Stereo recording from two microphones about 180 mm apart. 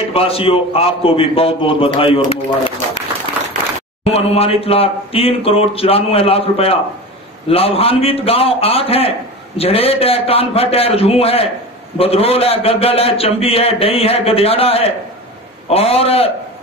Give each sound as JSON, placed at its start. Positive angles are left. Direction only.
{"t": 0.1, "sound": "a man's voice", "side_deg": 30}
{"t": 4.0, "sound": "a man's voice", "side_deg": 35}